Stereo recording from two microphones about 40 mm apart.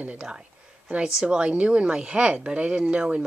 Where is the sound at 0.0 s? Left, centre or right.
Right.